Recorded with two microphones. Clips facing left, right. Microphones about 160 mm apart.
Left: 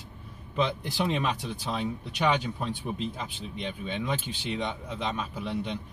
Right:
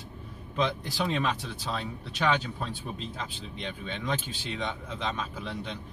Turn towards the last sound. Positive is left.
turn(degrees=10)  # may be behind; listen again after turning